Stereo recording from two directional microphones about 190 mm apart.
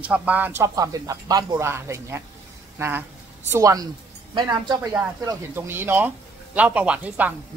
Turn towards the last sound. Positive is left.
turn(degrees=-10)  # may be behind; listen again after turning